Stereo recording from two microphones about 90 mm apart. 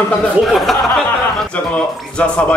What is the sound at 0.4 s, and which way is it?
Speech, centre (ahead or behind).